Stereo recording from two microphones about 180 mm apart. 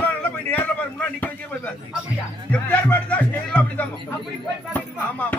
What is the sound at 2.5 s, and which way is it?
Music, 10° left (ahead or behind).